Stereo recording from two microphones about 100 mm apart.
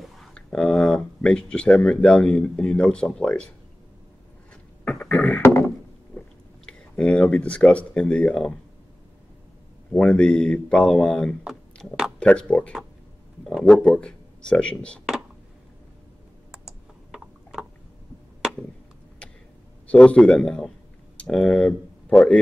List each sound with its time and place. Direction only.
0.0 s speech: 5° left (ahead or behind)
4.8 s beatboxing: 15° left (ahead or behind)
5.4 s a sound: 25° left (ahead or behind)
7.0 s speech: 10° left (ahead or behind)
9.9 s speech: 10° left (ahead or behind)
16.5 s computer keyboard: 5° right (ahead or behind)
19.9 s speech: 10° left (ahead or behind)